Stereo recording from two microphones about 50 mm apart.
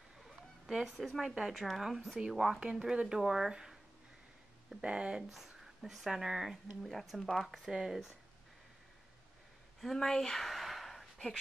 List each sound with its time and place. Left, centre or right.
0.9 s speech: centre
1.3 s speech: centre
2.6 s speech: centre
4.8 s speech: right
5.3 s speech: centre
7.4 s speech: centre
9.8 s a sound: centre